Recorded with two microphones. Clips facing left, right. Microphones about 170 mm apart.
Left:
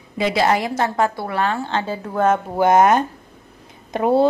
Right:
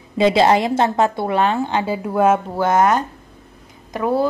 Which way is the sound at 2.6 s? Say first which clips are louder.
Left 6 dB; 20° left (ahead or behind).